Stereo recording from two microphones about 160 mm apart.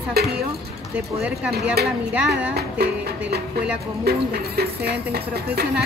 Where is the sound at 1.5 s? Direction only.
80° right.